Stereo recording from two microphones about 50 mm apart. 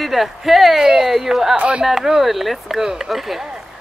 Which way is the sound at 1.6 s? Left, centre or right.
Right.